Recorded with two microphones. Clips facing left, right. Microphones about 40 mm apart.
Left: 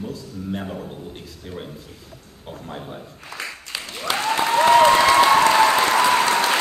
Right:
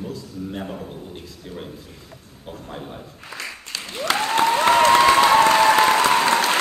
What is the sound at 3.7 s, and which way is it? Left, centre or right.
Applause, centre.